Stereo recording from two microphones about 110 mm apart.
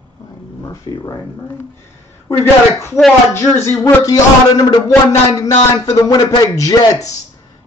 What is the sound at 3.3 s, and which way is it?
A man's voice, 25° left (ahead or behind).